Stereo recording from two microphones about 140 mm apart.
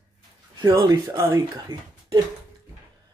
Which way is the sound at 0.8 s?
25° right (ahead or behind).